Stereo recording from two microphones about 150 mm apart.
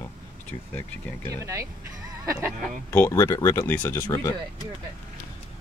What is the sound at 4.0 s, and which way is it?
Speech, 25° left (ahead or behind).